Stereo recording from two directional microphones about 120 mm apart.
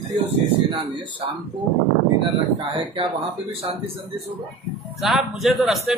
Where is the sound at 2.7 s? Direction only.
50° right (ahead or behind).